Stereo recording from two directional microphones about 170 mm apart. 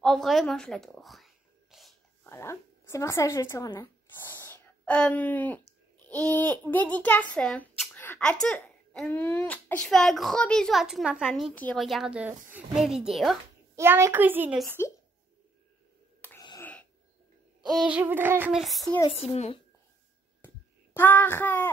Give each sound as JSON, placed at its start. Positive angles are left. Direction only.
{"t": 0.0, "sound": "speech", "side_deg": 0}
{"t": 2.2, "sound": "speech", "side_deg": 15}
{"t": 5.9, "sound": "a sound", "side_deg": 10}
{"t": 6.3, "sound": "a child's voice", "side_deg": 10}
{"t": 13.7, "sound": "child singing", "side_deg": -15}
{"t": 14.8, "sound": "a child's voice", "side_deg": 15}
{"t": 16.2, "sound": "wheeze", "side_deg": 10}
{"t": 17.6, "sound": "child singing", "side_deg": -5}
{"t": 18.9, "sound": "speech", "side_deg": 35}
{"t": 20.4, "sound": "a sound", "side_deg": 10}